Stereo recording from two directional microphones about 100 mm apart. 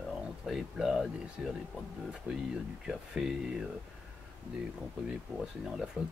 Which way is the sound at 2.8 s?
5° right (ahead or behind).